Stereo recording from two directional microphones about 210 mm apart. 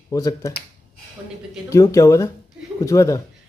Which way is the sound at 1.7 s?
15° left (ahead or behind).